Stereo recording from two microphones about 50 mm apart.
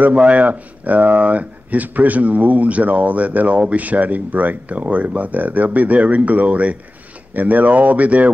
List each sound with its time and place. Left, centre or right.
0.0 s speech: right